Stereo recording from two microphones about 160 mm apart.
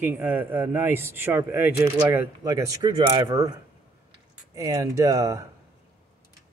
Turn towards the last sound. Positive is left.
turn(degrees=-20)  # may be behind; listen again after turning